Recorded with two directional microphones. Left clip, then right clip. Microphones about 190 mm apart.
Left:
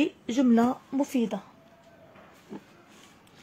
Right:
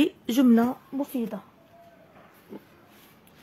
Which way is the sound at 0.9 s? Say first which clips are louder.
Left 3 dB; 15° left (ahead or behind).